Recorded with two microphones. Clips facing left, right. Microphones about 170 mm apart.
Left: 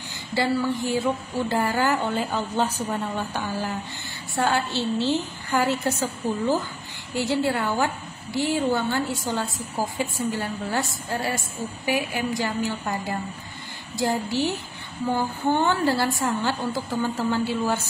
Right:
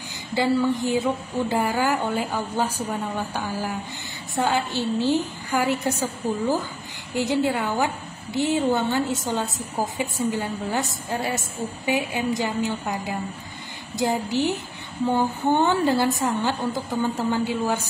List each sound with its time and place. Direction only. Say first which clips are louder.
0.3 s a woman's voice: right 2 dB; 20° right (ahead or behind)
7.2 s a woman's voice: right 1 dB; 15° right (ahead or behind)
13.9 s a woman's voice: right 1 dB; 20° right (ahead or behind)